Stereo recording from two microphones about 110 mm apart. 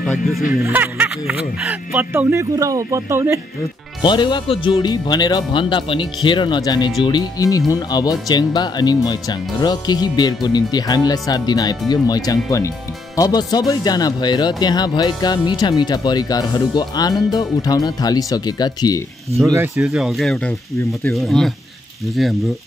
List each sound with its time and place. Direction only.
0.1 s speech: centre (ahead or behind)
0.7 s speech: 15° right (ahead or behind)
2.5 s speech: 30° right (ahead or behind)
4.0 s speech: 45° left (ahead or behind)
19.8 s speech: 5° right (ahead or behind)